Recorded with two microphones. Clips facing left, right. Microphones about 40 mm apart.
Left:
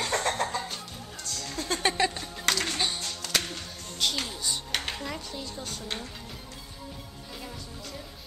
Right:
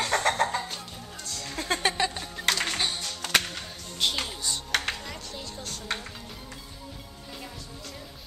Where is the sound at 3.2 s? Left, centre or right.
Right.